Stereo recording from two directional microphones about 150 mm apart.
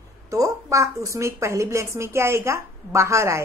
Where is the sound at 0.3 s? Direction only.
20° right (ahead or behind).